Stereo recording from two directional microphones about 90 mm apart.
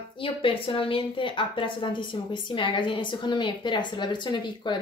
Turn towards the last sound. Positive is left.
turn(degrees=60)  # may be behind; listen again after turning